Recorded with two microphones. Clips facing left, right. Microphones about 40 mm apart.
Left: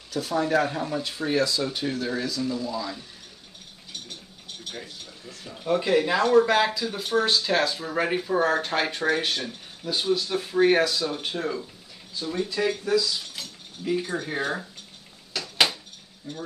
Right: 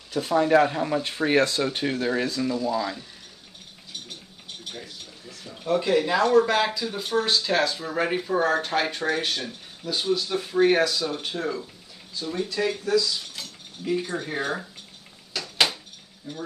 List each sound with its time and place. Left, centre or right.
0.1 s speech: right
5.4 s speech: centre
15.3 s a sound: centre
16.3 s speech: centre